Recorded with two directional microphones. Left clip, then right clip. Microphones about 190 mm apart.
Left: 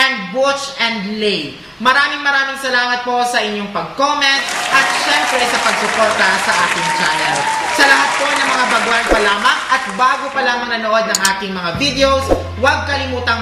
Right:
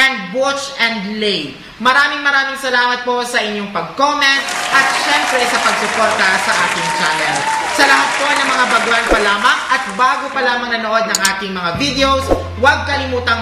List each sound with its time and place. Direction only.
0.0 s a man's voice: 15° right (ahead or behind)
4.7 s speech: centre (ahead or behind)
9.4 s a man's voice: 15° right (ahead or behind)